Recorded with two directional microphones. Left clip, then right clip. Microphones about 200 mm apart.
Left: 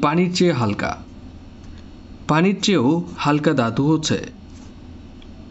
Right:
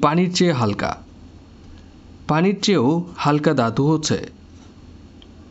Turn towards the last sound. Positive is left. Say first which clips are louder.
# even
turn(degrees=-20)  # may be behind; listen again after turning